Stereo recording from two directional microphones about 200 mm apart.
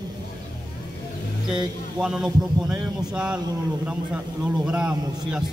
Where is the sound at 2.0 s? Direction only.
5° right (ahead or behind).